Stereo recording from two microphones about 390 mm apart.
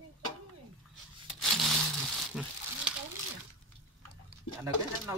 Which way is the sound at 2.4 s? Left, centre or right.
Centre.